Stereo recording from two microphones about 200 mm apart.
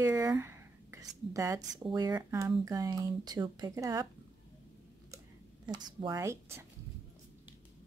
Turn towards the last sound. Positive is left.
turn(degrees=-15)  # may be behind; listen again after turning